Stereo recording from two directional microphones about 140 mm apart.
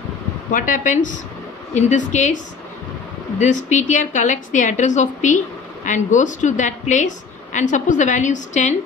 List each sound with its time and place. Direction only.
0.5 s a woman's voice: 70° left (ahead or behind)